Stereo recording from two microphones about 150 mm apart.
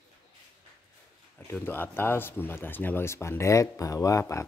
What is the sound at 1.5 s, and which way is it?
Speech, 15° left (ahead or behind).